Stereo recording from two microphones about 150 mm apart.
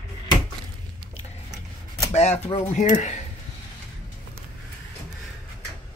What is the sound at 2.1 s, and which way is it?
Speech, 45° left (ahead or behind).